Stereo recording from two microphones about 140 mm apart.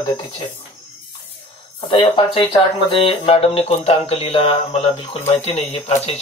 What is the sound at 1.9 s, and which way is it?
Speech, 30° left (ahead or behind).